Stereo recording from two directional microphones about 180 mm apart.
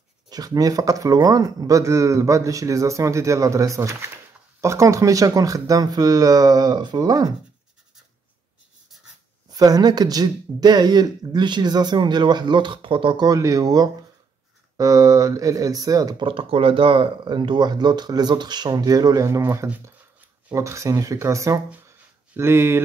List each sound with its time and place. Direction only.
0.3 s speech: 20° right (ahead or behind)
9.5 s speech: 20° right (ahead or behind)